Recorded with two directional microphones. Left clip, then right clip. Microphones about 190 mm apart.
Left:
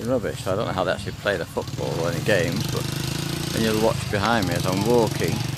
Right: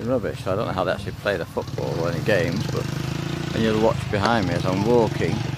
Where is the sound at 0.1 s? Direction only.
Centre (ahead or behind).